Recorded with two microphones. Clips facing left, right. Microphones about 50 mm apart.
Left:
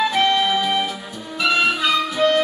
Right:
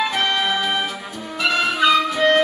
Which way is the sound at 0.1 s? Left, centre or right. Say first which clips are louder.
Left 3 dB; right.